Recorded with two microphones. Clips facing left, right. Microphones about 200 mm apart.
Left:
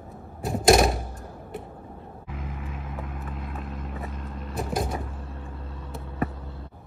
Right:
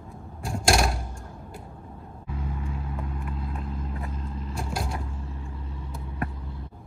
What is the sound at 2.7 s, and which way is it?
Vehicle, 30° right (ahead or behind).